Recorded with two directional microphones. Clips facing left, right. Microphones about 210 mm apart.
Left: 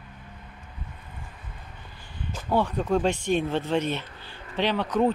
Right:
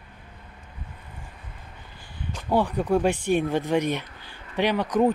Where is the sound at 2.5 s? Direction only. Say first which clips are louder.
Right 2 dB; 10° right (ahead or behind).